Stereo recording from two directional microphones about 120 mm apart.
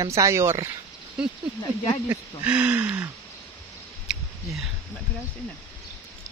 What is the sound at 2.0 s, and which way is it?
Speech, 15° right (ahead or behind).